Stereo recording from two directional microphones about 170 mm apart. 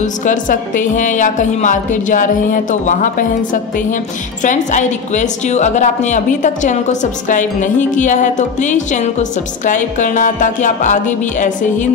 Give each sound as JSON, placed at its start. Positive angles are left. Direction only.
{"t": 0.0, "sound": "a woman's voice", "side_deg": 50}